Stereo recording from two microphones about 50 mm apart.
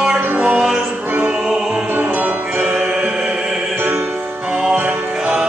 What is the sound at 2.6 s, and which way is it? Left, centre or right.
Music, right.